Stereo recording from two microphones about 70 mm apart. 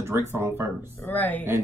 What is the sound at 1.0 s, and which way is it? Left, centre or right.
Speech, left.